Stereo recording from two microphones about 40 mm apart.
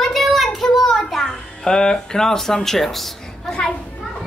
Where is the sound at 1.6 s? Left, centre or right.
Centre.